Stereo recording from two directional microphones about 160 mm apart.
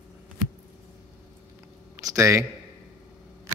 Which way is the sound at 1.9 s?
20° right (ahead or behind).